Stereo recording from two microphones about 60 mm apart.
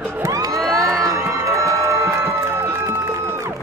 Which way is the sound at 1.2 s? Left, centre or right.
Right.